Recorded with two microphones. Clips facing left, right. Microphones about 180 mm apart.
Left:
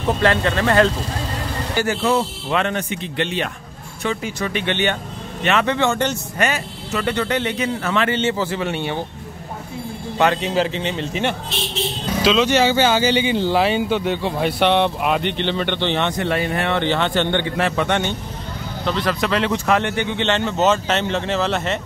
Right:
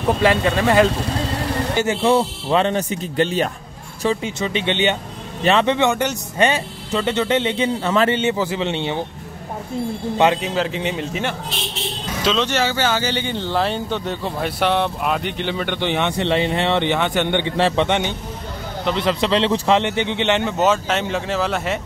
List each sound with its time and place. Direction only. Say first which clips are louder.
0.2 s speech: right 1 dB; 10° right (ahead or behind)
1.8 s a man's voice: right 2 dB; 25° right (ahead or behind)
8.1 s speech: right 1 dB; 15° right (ahead or behind)
10.1 s speech: even; 20° right (ahead or behind)
12.2 s speech: left 4 dB; 5° left (ahead or behind)
12.5 s speech: left 4 dB; 15° left (ahead or behind); by 16.2 s 10° right (ahead or behind)
16.2 s speech: right 2 dB; 25° right (ahead or behind)
17.6 s speech: right 5 dB; 30° right (ahead or behind)
17.8 s speech: even; 15° right (ahead or behind)